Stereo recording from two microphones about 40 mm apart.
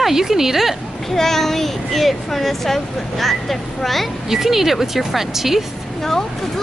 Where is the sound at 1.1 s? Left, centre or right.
Centre.